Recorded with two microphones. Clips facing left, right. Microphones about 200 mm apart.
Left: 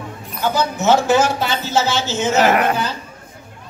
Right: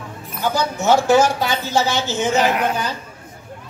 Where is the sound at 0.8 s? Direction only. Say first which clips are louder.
Right 1 dB; 15° right (ahead or behind).